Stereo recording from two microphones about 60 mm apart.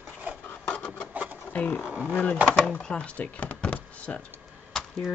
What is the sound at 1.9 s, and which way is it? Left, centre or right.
Speech, right.